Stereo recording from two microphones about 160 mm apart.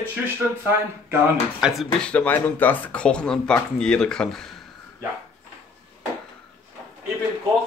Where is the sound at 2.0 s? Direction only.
10° left (ahead or behind).